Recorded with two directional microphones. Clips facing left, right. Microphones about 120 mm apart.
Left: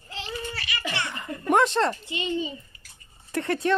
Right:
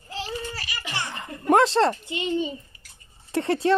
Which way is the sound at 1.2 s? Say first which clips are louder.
Right 3 dB; 30° right (ahead or behind).